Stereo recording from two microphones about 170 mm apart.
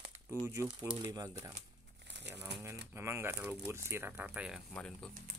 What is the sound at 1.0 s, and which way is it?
Speech, 20° right (ahead or behind).